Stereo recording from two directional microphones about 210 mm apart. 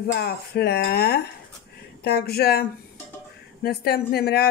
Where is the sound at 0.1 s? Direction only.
45° left (ahead or behind).